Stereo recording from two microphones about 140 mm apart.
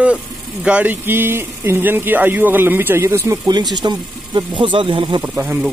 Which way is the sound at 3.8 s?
35° right (ahead or behind).